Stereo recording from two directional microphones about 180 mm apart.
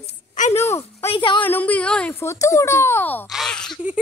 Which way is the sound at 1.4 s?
10° left (ahead or behind).